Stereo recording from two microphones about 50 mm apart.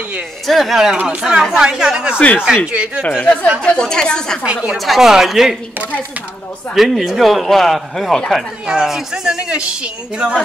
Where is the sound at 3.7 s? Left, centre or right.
Centre.